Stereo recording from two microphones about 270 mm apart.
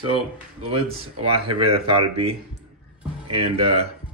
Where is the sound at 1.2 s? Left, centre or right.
Centre.